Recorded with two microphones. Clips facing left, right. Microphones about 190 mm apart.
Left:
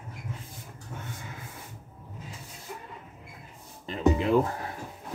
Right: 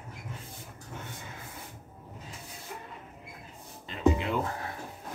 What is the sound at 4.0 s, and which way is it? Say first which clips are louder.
Music: left 2 dB; 25° left (ahead or behind).